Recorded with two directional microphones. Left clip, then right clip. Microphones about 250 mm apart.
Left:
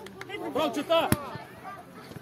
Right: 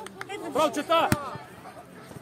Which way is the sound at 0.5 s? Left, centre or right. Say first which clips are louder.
Right 2 dB; right.